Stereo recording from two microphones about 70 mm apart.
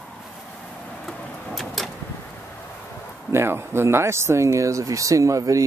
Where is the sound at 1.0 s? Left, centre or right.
Centre.